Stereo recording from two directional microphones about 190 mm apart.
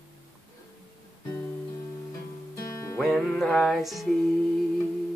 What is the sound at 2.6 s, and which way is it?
Music, 15° left (ahead or behind).